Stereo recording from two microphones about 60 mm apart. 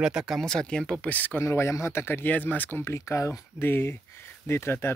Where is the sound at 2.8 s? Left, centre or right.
Left.